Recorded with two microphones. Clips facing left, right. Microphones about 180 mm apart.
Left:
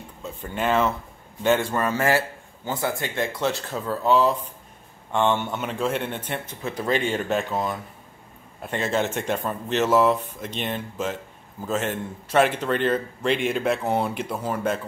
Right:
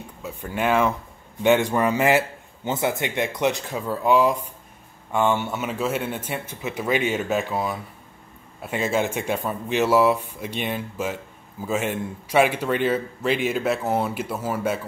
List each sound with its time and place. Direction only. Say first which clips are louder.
0.2 s a man's voice: right 2 dB; 10° right (ahead or behind)